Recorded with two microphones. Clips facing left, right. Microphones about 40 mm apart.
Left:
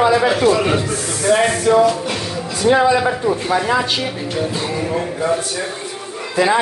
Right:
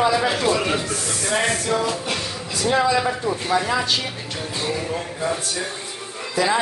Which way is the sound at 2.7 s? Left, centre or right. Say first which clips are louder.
Left 5 dB; left.